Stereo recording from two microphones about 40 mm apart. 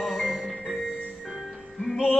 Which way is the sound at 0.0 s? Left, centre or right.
Centre.